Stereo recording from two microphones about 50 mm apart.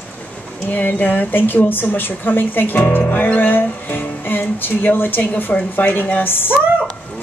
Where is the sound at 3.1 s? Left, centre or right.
Left.